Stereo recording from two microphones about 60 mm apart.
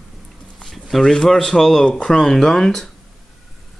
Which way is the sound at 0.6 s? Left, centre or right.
Centre.